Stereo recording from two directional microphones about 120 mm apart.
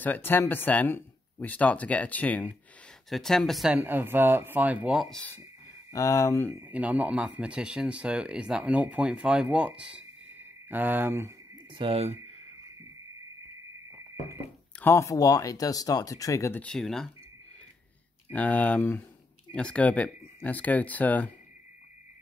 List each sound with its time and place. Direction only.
0.0 s speech: 15° left (ahead or behind)
3.7 s speech: 15° right (ahead or behind)
5.9 s speech: 25° left (ahead or behind)
6.5 s speech: 10° right (ahead or behind)
11.5 s a sound: 45° right (ahead or behind)
14.8 s speech: 20° left (ahead or behind)
16.6 s speech: 5° left (ahead or behind)
18.3 s speech: 10° left (ahead or behind)